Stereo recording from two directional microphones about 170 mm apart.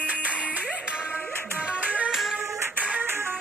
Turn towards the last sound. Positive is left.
turn(degrees=-15)  # may be behind; listen again after turning